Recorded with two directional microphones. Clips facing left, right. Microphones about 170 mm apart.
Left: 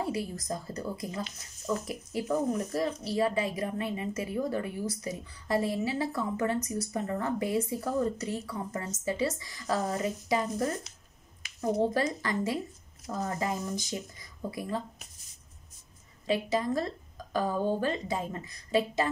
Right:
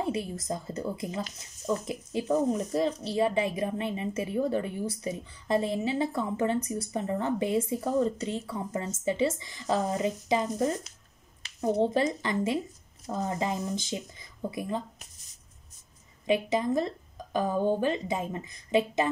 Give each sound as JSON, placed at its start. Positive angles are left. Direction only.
{"t": 0.0, "sound": "speech", "side_deg": -25}
{"t": 11.8, "sound": "speech", "side_deg": -20}
{"t": 16.3, "sound": "speech", "side_deg": -20}